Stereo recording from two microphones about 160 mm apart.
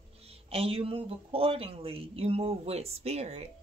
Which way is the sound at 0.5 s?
35° right (ahead or behind).